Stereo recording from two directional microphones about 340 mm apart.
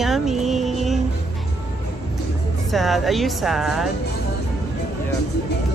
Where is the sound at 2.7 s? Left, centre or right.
Centre.